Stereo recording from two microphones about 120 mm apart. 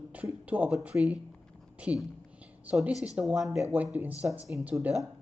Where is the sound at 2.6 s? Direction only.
10° right (ahead or behind).